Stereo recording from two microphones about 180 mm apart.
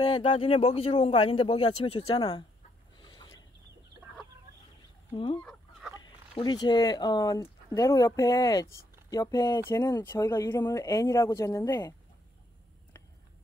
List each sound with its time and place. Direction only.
0.0 s a man's voice: 30° left (ahead or behind)
3.0 s a sound: 25° left (ahead or behind)
5.1 s speech: 25° left (ahead or behind)
5.4 s chicken: centre (ahead or behind)
5.9 s speech: 25° left (ahead or behind)